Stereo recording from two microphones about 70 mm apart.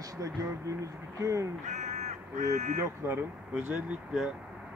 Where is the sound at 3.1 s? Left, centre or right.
Right.